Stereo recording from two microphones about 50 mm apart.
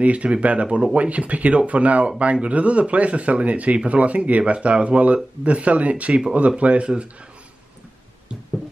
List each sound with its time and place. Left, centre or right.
0.0 s speech: right